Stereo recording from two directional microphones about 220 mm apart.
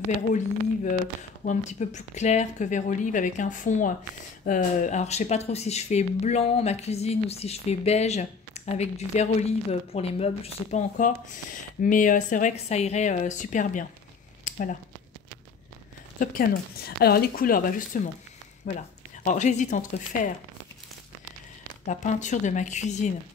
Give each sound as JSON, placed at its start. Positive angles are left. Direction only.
{"t": 1.4, "sound": "speech", "side_deg": 35}
{"t": 14.4, "sound": "a sound", "side_deg": 35}
{"t": 16.2, "sound": "speech", "side_deg": 40}
{"t": 21.8, "sound": "speech", "side_deg": 35}